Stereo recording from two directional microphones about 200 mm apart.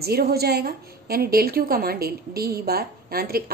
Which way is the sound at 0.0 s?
50° right (ahead or behind).